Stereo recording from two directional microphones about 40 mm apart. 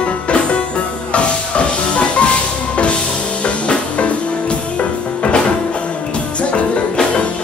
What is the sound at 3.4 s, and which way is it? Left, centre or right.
Music, left.